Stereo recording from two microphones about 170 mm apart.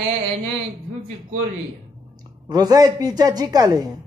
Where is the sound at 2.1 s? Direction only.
25° right (ahead or behind).